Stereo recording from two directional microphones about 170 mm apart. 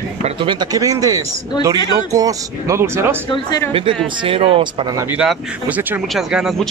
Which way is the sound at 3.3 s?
25° left (ahead or behind).